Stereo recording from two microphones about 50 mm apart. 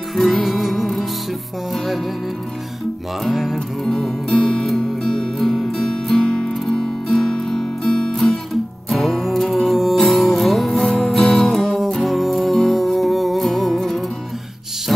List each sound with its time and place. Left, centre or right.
0.1 s music: centre
3.3 s music: centre
3.5 s music: centre
8.8 s music: centre
14.9 s a sound: centre